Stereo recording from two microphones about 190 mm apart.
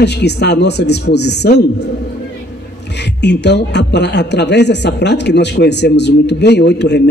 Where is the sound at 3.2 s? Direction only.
65° left (ahead or behind).